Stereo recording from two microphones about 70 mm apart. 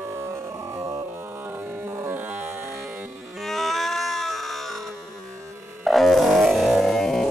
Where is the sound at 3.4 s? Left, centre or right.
Centre.